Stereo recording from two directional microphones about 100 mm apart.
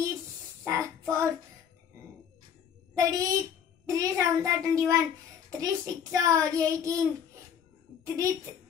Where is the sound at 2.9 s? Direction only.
35° right (ahead or behind).